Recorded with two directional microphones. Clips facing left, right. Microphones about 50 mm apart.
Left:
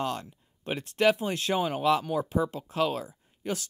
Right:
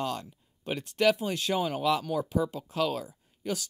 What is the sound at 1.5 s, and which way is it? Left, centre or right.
Speech, left.